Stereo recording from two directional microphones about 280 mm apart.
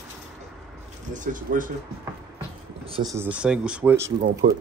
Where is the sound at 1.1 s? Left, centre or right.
Right.